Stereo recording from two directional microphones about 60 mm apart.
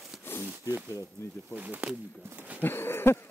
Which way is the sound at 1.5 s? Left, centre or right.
Right.